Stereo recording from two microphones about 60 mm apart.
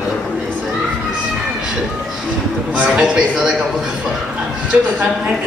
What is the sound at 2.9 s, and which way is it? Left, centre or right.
Speech, centre.